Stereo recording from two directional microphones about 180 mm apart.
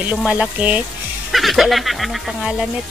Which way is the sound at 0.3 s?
10° right (ahead or behind).